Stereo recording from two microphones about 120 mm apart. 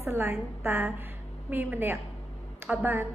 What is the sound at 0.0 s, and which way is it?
A woman's voice, 20° right (ahead or behind).